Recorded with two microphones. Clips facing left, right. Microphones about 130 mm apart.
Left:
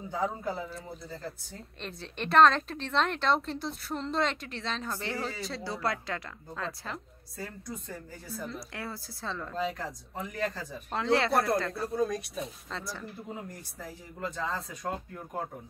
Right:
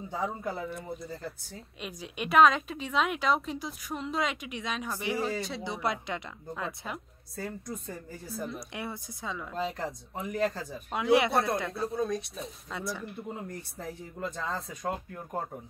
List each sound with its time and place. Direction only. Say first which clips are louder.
1.0 s a woman's voice: right 1 dB; centre (ahead or behind)
5.6 s a woman's voice: right 1 dB; 20° right (ahead or behind)
6.9 s speech: right 1 dB; centre (ahead or behind)
8.7 s a woman's voice: right 2 dB; 20° right (ahead or behind); by 9.8 s 5° right (ahead or behind)
9.8 s a woman's voice: right 2 dB; 25° right (ahead or behind)
10.2 s a woman's voice: right 4 dB; 5° right (ahead or behind)
11.3 s speech: left 1 dB; centre (ahead or behind)